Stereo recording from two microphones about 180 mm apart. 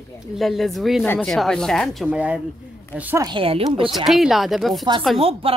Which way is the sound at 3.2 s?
30° right (ahead or behind).